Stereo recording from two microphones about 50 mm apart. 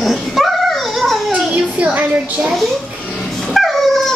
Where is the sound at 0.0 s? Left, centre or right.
Centre.